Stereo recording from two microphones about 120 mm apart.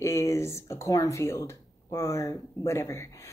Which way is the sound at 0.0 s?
25° left (ahead or behind).